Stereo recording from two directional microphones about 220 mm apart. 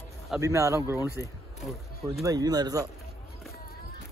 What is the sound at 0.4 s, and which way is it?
Speech, 15° right (ahead or behind).